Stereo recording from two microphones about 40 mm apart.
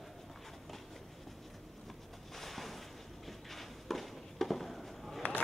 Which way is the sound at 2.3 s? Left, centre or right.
Centre.